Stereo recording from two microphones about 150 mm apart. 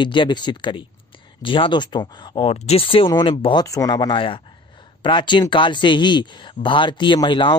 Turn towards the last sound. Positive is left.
turn(degrees=30)  # may be behind; listen again after turning